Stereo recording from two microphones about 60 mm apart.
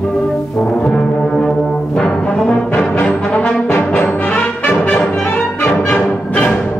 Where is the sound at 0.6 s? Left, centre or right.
Centre.